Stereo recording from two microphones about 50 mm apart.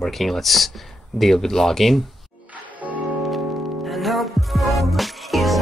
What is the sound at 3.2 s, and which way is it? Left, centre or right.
Music, centre.